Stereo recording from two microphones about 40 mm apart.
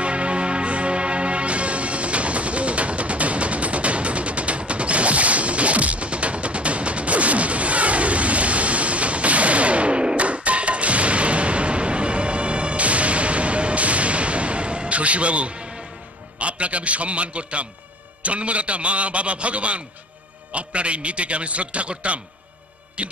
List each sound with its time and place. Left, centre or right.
0.0 s music: right
16.3 s a man's voice: right